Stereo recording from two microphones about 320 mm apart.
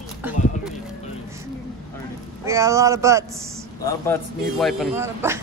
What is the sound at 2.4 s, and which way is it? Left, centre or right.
Speech, centre.